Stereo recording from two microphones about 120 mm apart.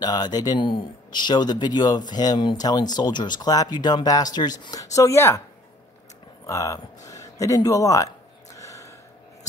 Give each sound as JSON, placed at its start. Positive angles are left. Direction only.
{"t": 0.0, "sound": "speech", "side_deg": 35}
{"t": 4.9, "sound": "speech", "side_deg": 25}
{"t": 6.4, "sound": "a sound", "side_deg": 25}